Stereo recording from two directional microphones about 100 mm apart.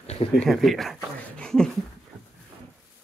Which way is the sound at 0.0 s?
90° left.